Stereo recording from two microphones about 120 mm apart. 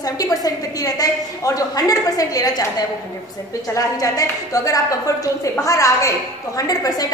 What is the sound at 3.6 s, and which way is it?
A woman's voice, 30° left (ahead or behind).